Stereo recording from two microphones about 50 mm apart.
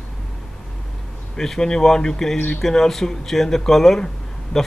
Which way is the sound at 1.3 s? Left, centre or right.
Centre.